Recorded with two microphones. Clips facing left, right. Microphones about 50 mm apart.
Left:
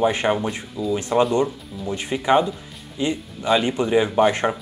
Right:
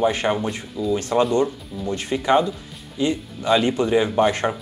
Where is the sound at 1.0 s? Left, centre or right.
Centre.